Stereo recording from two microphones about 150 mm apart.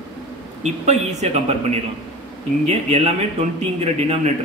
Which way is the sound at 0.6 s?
50° right (ahead or behind).